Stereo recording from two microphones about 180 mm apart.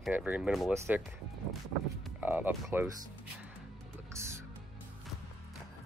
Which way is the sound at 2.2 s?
10° right (ahead or behind).